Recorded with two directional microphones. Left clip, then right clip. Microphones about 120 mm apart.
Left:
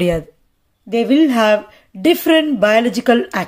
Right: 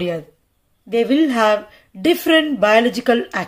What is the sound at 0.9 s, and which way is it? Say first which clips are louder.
Speech: left 2 dB; 25° left (ahead or behind).